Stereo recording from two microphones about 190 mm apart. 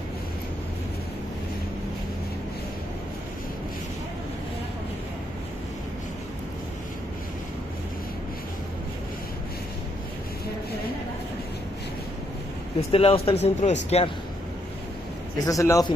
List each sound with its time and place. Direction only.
12.9 s speech: 30° left (ahead or behind)
15.3 s a man's voice: 15° left (ahead or behind)